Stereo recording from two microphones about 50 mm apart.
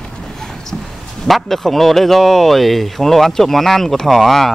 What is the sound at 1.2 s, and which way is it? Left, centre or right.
Speech, centre.